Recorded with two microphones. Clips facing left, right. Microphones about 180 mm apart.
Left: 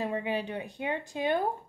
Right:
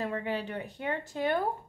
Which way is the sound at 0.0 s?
15° left (ahead or behind).